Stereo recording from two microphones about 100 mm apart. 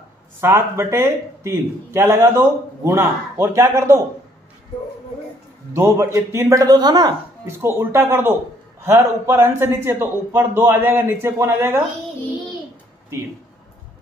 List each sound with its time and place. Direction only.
0.4 s a man's voice: 25° right (ahead or behind)
5.7 s speech: 25° right (ahead or behind); by 7.2 s 45° right (ahead or behind)
7.4 s a man's voice: 25° right (ahead or behind)